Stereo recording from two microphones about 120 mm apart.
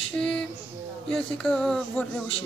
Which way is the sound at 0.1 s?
5° left (ahead or behind).